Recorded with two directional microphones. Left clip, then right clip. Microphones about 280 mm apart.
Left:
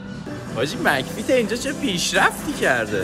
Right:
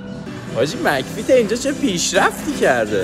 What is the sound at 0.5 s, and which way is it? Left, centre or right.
Speech, centre.